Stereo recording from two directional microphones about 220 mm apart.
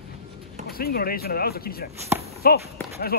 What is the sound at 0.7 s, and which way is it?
Speech, 45° left (ahead or behind).